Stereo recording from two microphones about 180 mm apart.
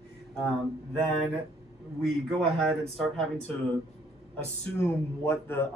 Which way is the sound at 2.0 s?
Centre (ahead or behind).